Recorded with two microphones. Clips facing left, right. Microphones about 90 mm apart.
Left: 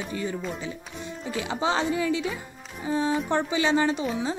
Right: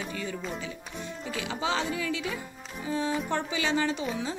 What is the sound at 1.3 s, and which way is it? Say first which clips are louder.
A woman's voice: left 4 dB; 30° left (ahead or behind).